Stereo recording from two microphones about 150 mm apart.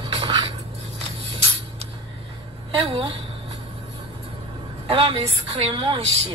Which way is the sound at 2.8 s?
35° right (ahead or behind).